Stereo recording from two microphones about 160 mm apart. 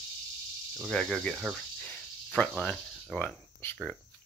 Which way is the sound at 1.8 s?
5° left (ahead or behind).